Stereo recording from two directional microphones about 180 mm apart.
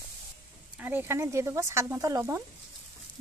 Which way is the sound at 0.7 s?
10° right (ahead or behind).